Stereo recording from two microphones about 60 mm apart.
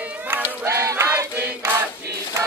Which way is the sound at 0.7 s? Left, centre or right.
Right.